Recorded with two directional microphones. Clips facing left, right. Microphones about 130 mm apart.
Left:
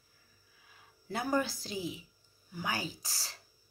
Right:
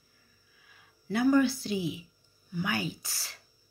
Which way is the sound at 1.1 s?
35° left (ahead or behind).